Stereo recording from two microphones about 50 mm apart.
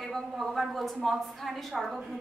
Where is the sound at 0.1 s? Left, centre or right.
Centre.